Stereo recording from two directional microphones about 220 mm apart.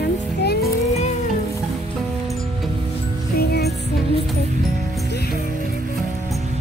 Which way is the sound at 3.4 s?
45° left (ahead or behind).